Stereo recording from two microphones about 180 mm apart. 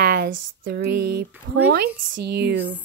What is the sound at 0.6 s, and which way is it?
Speech, 60° right (ahead or behind).